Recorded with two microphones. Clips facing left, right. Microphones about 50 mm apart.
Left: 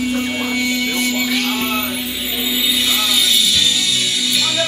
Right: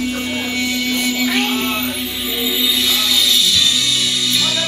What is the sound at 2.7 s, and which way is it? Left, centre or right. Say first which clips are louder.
Music: even; left.